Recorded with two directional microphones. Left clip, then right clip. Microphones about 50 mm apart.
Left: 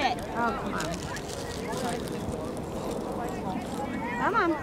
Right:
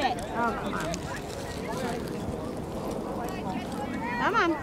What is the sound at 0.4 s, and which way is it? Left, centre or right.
Speech, right.